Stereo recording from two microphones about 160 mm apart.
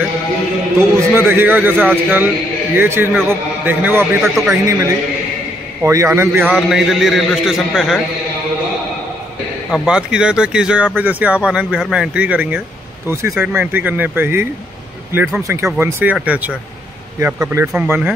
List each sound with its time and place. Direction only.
0.7 s speech: 15° right (ahead or behind)
4.2 s a man's voice: centre (ahead or behind)
5.8 s speech: 15° right (ahead or behind)
6.5 s a man's voice: centre (ahead or behind)
9.8 s speech: 5° right (ahead or behind)